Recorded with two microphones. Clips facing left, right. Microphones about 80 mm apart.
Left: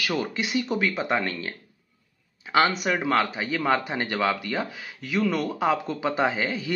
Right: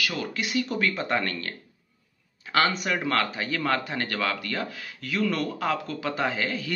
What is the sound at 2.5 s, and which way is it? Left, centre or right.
Speech, centre.